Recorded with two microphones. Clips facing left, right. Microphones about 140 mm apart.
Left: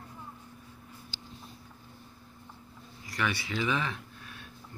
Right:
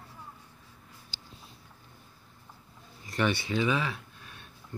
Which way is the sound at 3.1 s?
25° right (ahead or behind).